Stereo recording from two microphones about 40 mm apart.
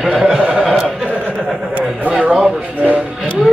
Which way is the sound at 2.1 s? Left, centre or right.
Right.